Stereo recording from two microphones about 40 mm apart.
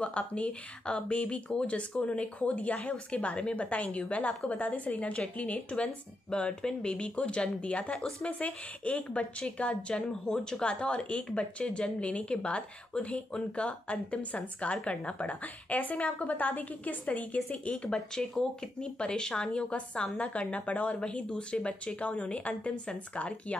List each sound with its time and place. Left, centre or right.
0.0 s a woman's voice: left
6.3 s a woman's voice: left
17.8 s a woman's voice: left
21.0 s a woman's voice: left